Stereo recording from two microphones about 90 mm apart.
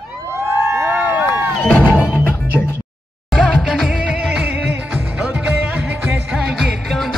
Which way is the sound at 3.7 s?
5° right (ahead or behind).